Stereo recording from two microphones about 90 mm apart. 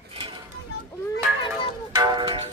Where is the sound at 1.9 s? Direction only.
55° right (ahead or behind).